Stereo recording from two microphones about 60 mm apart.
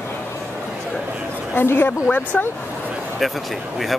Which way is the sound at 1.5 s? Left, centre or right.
Left.